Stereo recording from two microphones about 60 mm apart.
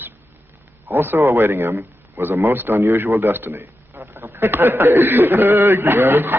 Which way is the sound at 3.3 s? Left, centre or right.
Right.